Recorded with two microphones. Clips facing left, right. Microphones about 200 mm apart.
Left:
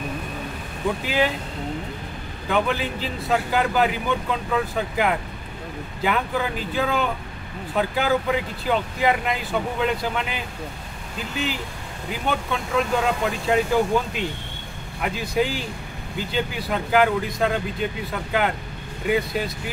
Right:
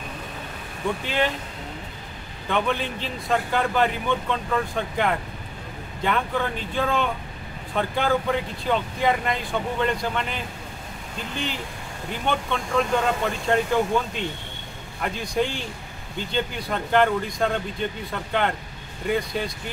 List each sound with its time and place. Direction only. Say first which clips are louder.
1.0 s speech: left 2 dB; 5° left (ahead or behind)
2.4 s speech: left 2 dB; 5° left (ahead or behind)
15.0 s speech: left 2 dB; 5° left (ahead or behind)